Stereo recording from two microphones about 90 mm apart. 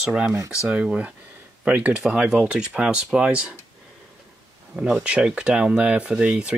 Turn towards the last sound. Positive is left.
turn(degrees=-10)  # may be behind; listen again after turning